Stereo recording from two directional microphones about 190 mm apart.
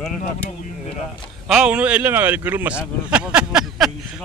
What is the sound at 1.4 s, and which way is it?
Speech, 5° right (ahead or behind).